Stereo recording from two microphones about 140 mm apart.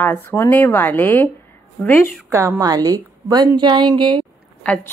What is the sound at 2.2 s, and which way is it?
A woman's voice, 15° right (ahead or behind).